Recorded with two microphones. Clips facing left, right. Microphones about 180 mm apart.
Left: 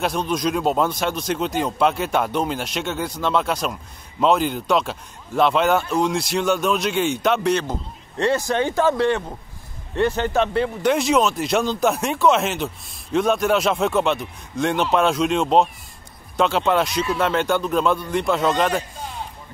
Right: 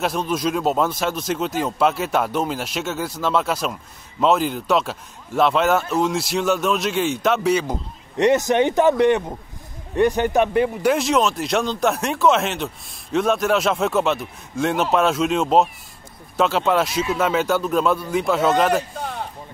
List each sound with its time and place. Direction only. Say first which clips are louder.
0.0 s speech: even; centre (ahead or behind)
8.2 s speech: right 4 dB; 20° right (ahead or behind)
10.9 s speech: left 3 dB; centre (ahead or behind)
18.9 s a sound: right 4 dB; 60° right (ahead or behind)